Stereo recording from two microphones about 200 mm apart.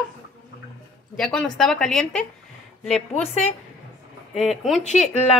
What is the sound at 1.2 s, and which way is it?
A woman's voice, 5° left (ahead or behind).